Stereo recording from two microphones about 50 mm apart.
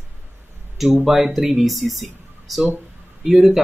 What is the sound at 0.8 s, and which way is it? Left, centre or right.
A man's voice, centre.